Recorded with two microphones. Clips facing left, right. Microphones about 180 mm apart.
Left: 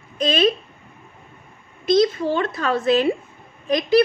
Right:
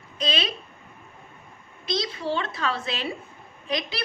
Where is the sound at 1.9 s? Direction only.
50° left (ahead or behind).